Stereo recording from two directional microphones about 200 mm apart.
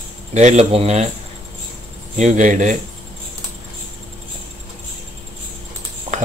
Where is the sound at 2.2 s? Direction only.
40° right (ahead or behind).